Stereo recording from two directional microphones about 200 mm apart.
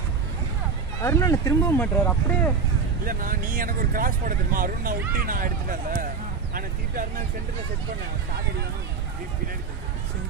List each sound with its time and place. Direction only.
1.0 s speech: 15° left (ahead or behind)
3.1 s speech: 45° right (ahead or behind)